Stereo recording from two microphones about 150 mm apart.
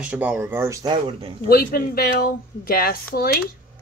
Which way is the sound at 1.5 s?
85° left.